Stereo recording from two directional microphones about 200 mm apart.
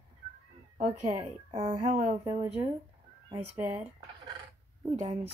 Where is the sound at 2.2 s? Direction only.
15° right (ahead or behind).